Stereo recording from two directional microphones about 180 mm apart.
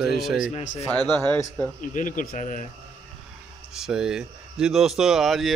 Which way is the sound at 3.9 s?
5° right (ahead or behind).